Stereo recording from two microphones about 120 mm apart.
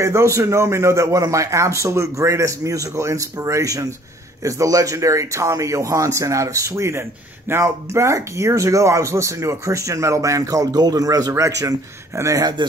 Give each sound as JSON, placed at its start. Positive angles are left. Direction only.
{"t": 0.0, "sound": "speech", "side_deg": -25}